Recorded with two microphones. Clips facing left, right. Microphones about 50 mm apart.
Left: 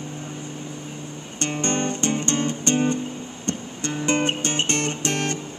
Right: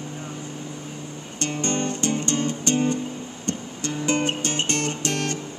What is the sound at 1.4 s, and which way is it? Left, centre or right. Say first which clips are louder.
Music: left 1 dB; left.